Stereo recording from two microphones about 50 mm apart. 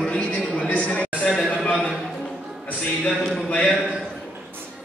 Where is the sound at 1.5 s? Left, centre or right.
Left.